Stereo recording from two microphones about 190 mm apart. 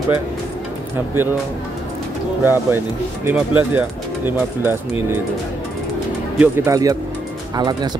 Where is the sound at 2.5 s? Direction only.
10° right (ahead or behind).